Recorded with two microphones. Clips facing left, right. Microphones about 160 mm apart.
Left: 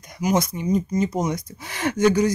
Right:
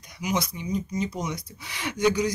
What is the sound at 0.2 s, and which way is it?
Speech, 45° left (ahead or behind).